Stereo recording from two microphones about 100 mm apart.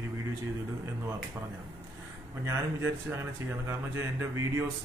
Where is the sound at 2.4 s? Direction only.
25° right (ahead or behind).